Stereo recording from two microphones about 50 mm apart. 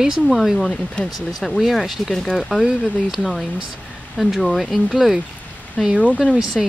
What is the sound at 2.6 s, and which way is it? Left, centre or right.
Speech, centre.